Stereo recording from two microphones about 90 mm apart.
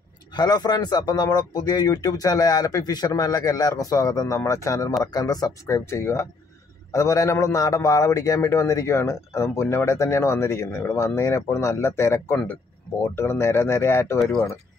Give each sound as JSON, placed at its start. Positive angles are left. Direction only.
{"t": 0.3, "sound": "a man's voice", "side_deg": 50}